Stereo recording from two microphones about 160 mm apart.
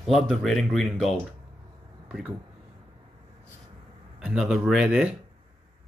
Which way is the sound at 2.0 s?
5° right (ahead or behind).